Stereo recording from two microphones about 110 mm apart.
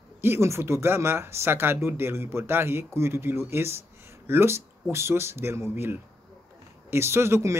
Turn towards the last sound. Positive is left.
turn(degrees=-25)  # may be behind; listen again after turning